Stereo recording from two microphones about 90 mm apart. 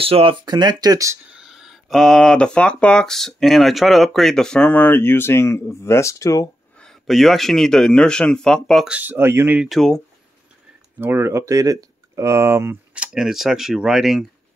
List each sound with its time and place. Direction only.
0.0 s speech: 90° right
0.5 s speech: 50° right (ahead or behind)
1.3 s speech: 5° right (ahead or behind); by 6.5 s 35° left (ahead or behind)
6.8 s speech: centre (ahead or behind)
8.8 s speech: 15° right (ahead or behind)
9.7 s speech: 5° left (ahead or behind)
11.0 s speech: 25° right (ahead or behind)
12.9 s speech: 10° right (ahead or behind)